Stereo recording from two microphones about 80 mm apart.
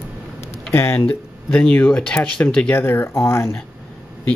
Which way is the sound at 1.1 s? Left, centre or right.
Centre.